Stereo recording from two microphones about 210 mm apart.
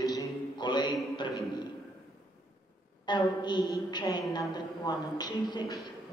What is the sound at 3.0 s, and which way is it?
A woman's voice, 20° left (ahead or behind).